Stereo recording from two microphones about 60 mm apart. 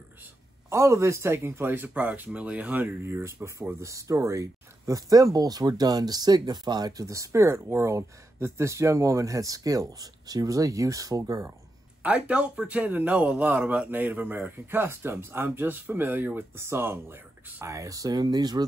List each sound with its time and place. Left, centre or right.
0.7 s speech: right
3.8 s speech: right
6.9 s speech: right
12.0 s speech: right
17.6 s speech: right